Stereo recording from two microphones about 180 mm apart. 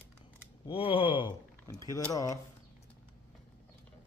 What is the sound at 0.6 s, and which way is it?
Speech, 30° left (ahead or behind).